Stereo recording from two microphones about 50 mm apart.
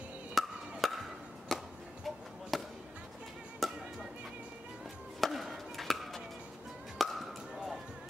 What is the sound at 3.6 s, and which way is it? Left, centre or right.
Music, centre.